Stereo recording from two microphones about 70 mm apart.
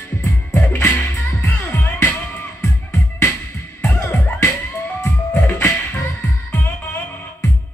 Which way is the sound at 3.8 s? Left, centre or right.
Left.